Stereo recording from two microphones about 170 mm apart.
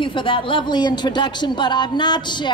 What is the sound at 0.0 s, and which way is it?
Speech, 30° left (ahead or behind).